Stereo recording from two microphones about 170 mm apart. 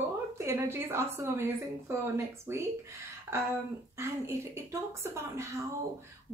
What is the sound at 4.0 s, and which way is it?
A woman's voice, 15° right (ahead or behind).